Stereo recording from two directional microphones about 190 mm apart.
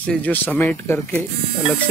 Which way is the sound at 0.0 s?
5° left (ahead or behind).